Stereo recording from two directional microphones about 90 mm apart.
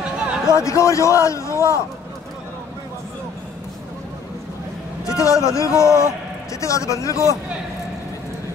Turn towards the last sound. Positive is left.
turn(degrees=35)  # may be behind; listen again after turning